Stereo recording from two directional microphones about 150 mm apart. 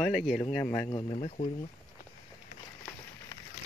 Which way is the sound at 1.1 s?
45° left (ahead or behind).